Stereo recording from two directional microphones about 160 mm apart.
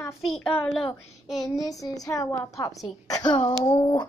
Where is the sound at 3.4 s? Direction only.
25° left (ahead or behind).